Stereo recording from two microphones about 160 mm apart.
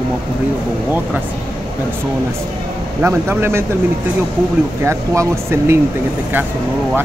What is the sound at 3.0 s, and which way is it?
Speech, 15° right (ahead or behind).